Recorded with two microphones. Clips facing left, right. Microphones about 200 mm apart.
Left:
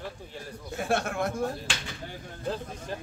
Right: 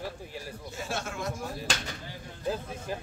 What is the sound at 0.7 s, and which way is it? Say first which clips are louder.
Speech: left 8 dB; 60° left (ahead or behind).